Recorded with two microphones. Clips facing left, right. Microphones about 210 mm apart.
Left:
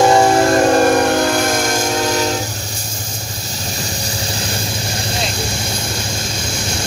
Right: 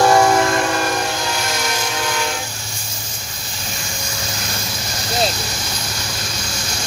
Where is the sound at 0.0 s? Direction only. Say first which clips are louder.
Left 2 dB; 25° left (ahead or behind).